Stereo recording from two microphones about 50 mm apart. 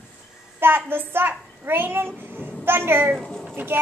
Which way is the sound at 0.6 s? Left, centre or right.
Right.